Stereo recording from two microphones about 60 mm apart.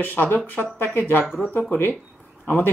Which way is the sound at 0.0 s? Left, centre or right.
Left.